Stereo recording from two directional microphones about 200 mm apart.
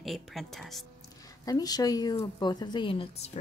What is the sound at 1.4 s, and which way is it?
Speech, 20° left (ahead or behind).